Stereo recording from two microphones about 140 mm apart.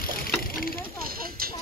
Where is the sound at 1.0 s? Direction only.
90° right.